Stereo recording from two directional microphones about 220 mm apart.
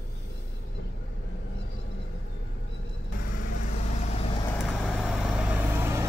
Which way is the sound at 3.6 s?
35° left (ahead or behind).